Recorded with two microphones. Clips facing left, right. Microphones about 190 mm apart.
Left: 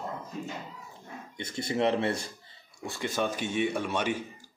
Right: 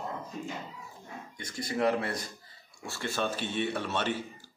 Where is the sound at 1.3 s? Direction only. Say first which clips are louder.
Left 2 dB; 25° left (ahead or behind).